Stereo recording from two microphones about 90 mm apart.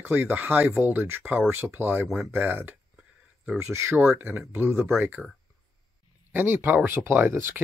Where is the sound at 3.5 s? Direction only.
30° right (ahead or behind).